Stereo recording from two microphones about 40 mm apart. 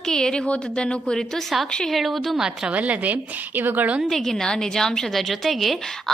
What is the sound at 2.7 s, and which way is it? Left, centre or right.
Speech, right.